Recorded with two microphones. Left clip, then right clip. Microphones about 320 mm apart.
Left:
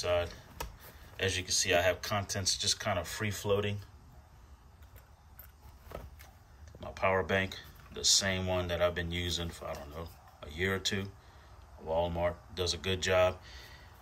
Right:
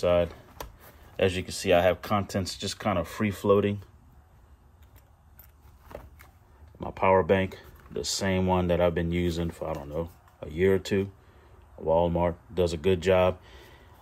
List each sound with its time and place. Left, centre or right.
0.0 s speech: centre
6.8 s speech: centre
12.2 s speech: centre